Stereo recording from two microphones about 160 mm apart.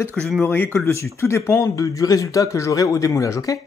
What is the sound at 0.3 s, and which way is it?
Speech, 10° left (ahead or behind).